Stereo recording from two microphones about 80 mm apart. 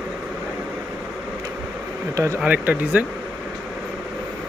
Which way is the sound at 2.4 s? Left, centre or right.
Right.